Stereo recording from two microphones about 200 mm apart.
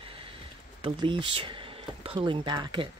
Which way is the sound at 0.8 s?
25° right (ahead or behind).